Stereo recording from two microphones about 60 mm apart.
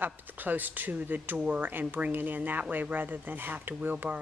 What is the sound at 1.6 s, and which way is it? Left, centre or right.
Speech, right.